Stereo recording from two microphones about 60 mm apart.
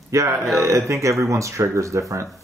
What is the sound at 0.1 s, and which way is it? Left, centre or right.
Speech, right.